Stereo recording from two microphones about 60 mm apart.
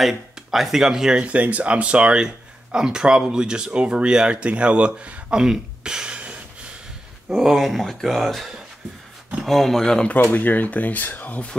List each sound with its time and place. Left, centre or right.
0.0 s speech: centre
1.2 s speech: right
7.3 s speech: centre
10.3 s speech: left